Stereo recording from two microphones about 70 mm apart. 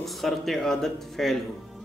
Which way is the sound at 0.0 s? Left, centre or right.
Centre.